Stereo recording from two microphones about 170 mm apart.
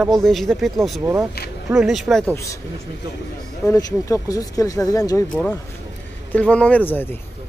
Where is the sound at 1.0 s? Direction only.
15° right (ahead or behind).